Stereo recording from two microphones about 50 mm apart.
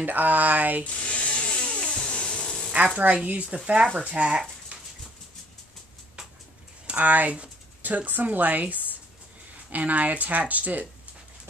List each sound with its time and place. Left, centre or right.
0.0 s speech: right
0.8 s a sound: left
3.2 s speech: right
4.7 s dog: right
7.0 s speech: right